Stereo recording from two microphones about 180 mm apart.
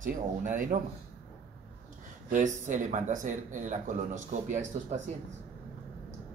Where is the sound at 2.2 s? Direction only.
45° right (ahead or behind).